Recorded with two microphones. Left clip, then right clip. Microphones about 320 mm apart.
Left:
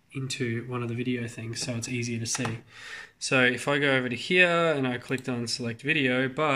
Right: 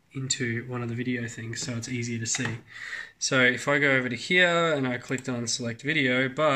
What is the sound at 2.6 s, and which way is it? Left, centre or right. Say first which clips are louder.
Speech: right 5 dB; centre.